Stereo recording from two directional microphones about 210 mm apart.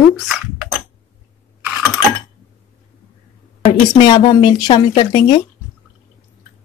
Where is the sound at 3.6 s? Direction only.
25° left (ahead or behind).